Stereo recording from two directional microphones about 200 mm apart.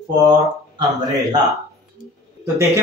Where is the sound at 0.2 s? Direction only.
20° right (ahead or behind).